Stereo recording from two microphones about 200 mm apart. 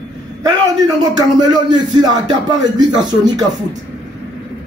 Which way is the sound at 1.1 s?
20° right (ahead or behind).